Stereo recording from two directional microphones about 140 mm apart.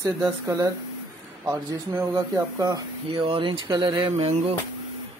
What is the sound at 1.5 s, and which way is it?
Speech, 20° right (ahead or behind).